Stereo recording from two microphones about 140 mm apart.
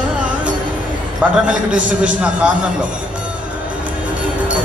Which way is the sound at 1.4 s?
10° right (ahead or behind).